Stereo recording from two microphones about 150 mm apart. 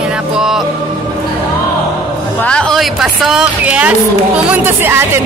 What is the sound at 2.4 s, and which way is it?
Speech, 5° left (ahead or behind).